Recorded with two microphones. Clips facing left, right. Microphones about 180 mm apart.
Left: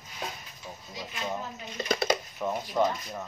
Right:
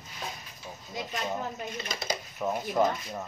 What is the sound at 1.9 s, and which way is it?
Speech, 60° left (ahead or behind).